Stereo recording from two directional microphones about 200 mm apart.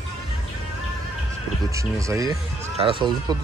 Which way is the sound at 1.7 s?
15° right (ahead or behind).